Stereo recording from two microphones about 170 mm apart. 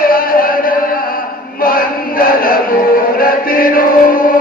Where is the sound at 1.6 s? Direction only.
60° left (ahead or behind).